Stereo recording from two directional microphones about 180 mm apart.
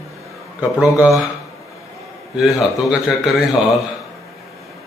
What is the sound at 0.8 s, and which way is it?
Speech, 5° right (ahead or behind).